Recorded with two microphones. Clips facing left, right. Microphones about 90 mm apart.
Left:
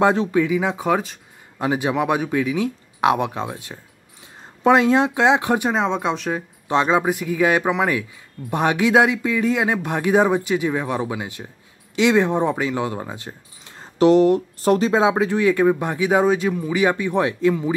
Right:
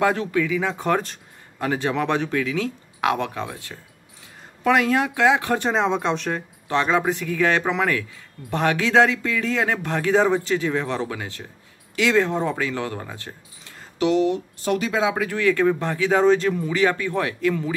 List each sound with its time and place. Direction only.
0.0 s speech: 20° left (ahead or behind)
0.7 s speech: 5° left (ahead or behind)
5.7 s speech: centre (ahead or behind)
6.7 s speech: 15° left (ahead or behind)
13.7 s speech: 40° left (ahead or behind); by 17.7 s 20° left (ahead or behind)